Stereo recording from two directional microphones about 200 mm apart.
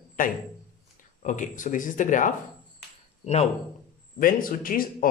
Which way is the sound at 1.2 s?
40° left (ahead or behind).